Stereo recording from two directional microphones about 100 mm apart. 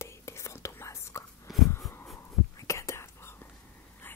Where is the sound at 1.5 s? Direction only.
Centre (ahead or behind).